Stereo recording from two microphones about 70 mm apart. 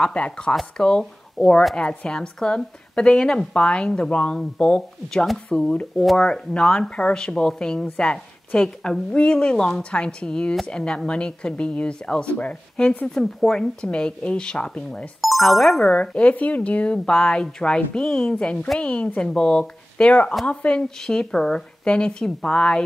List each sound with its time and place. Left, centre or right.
0.0 s a woman's voice: centre
13.1 s a woman's voice: centre
15.2 s speech: centre
15.9 s a woman's voice: centre